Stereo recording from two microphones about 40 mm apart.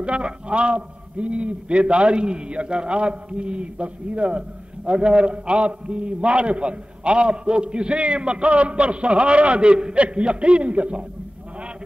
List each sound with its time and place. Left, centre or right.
0.0 s a man's voice: right